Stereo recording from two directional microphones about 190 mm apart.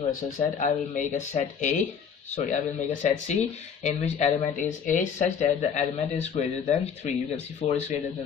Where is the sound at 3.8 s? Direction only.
40° left (ahead or behind).